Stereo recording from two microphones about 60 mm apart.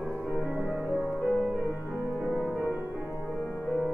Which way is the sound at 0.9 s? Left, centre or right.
Right.